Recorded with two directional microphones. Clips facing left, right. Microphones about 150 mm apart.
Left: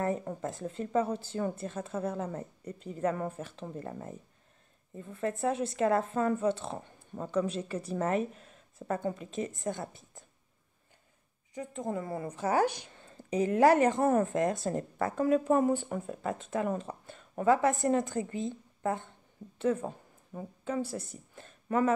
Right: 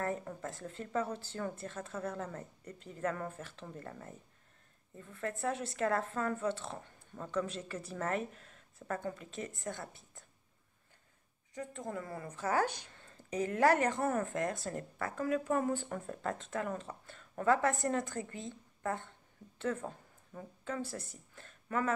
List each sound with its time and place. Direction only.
0.0 s a woman's voice: 20° left (ahead or behind)
11.5 s a woman's voice: 20° left (ahead or behind)